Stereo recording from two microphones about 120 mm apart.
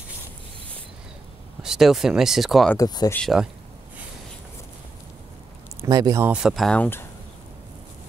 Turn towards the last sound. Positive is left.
turn(degrees=15)  # may be behind; listen again after turning